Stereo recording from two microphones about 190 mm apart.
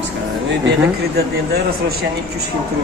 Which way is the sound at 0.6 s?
55° right (ahead or behind).